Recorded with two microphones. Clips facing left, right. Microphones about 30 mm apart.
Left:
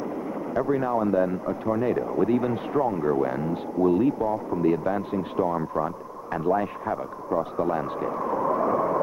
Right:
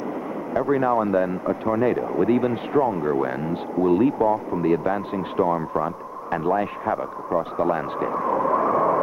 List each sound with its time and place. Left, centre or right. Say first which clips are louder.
0.6 s speech: right 4 dB; right